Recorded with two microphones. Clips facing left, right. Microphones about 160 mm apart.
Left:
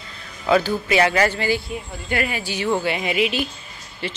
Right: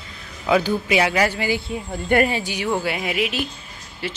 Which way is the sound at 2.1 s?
55° right (ahead or behind).